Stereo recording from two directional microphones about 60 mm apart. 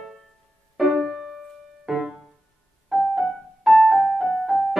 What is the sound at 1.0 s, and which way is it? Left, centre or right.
Music, centre.